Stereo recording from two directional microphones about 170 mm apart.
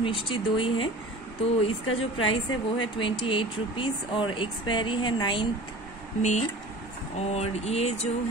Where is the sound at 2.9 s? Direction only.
30° left (ahead or behind).